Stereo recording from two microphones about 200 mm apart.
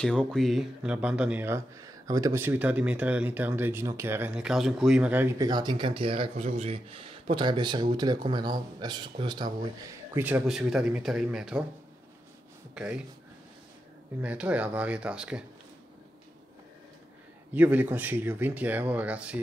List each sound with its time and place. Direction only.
0.0 s speech: 5° left (ahead or behind)
5.5 s speech: 20° right (ahead or behind)
10.1 s speech: 10° right (ahead or behind)
12.7 s speech: 5° right (ahead or behind)
14.2 s speech: 5° right (ahead or behind)
17.6 s speech: 10° right (ahead or behind)